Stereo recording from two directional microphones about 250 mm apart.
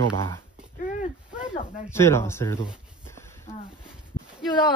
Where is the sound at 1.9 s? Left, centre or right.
Centre.